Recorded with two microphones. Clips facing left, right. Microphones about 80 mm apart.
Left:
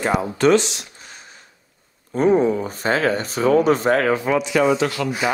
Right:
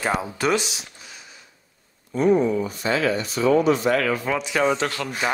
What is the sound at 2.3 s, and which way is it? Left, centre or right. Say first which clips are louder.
Speech: left 3 dB; left.